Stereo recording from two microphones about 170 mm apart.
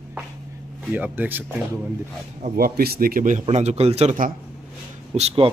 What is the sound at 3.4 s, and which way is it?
Speech, 40° right (ahead or behind).